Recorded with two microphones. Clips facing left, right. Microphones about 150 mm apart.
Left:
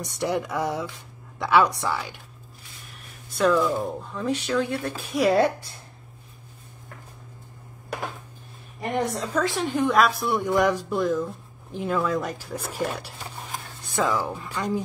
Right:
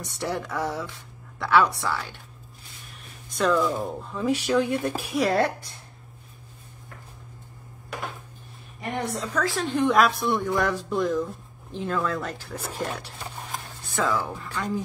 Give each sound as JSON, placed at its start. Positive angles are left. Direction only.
{"t": 0.0, "sound": "speech", "side_deg": 15}
{"t": 3.3, "sound": "speech", "side_deg": 5}
{"t": 5.1, "sound": "a woman's voice", "side_deg": 5}
{"t": 9.3, "sound": "a woman's voice", "side_deg": 20}
{"t": 9.7, "sound": "a woman's voice", "side_deg": 0}
{"t": 10.4, "sound": "speech", "side_deg": 15}
{"t": 11.0, "sound": "a woman's voice", "side_deg": 0}